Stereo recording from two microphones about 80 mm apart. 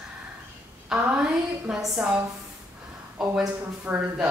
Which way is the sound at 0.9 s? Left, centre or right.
Centre.